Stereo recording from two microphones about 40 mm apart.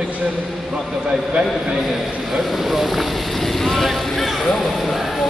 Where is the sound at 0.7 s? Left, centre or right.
Right.